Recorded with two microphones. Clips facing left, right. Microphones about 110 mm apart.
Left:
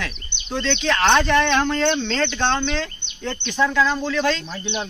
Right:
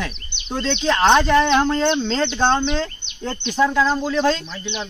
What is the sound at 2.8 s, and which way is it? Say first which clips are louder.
Speech: right 3 dB; 30° right (ahead or behind).